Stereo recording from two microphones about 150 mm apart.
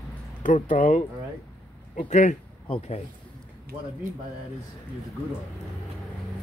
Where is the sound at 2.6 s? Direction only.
40° left (ahead or behind).